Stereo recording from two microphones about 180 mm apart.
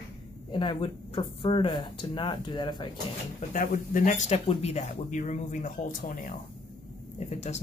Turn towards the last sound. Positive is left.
turn(degrees=40)  # may be behind; listen again after turning